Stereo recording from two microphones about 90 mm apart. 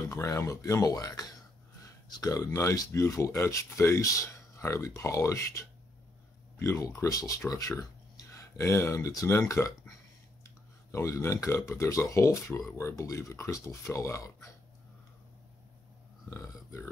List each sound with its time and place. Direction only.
0.0 s speech: 40° left (ahead or behind)
16.3 s burping: 30° left (ahead or behind)